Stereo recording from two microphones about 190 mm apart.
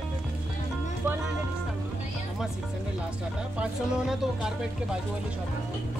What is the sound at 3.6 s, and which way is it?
Speech, 5° right (ahead or behind).